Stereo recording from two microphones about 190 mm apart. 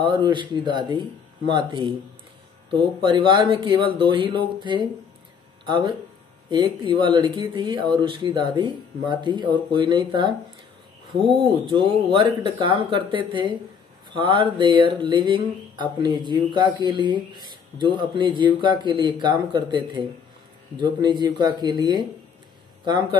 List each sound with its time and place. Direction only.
0.0 s speech: 25° right (ahead or behind)